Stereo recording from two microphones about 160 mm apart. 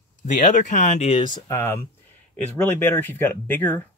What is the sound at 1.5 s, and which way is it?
Speech, 15° left (ahead or behind).